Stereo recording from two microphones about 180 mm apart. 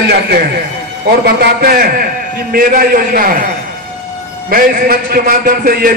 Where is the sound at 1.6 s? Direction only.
55° right (ahead or behind).